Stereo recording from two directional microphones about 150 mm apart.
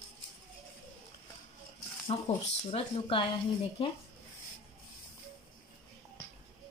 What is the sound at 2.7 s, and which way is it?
Speech, 35° left (ahead or behind).